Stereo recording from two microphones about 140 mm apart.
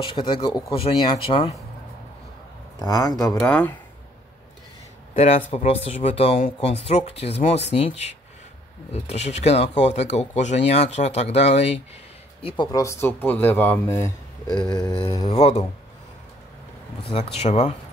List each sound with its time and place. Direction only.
0.0 s speech: 35° left (ahead or behind)
2.8 s speech: 30° left (ahead or behind)
3.3 s speech: 10° left (ahead or behind)
5.1 s speech: 50° left (ahead or behind)
12.7 s speech: 20° left (ahead or behind)
14.5 s speech: 35° left (ahead or behind); by 15.6 s 50° left (ahead or behind)
17.0 s speech: 45° left (ahead or behind)